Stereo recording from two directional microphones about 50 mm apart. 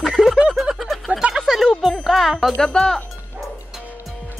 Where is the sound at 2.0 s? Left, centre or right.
Centre.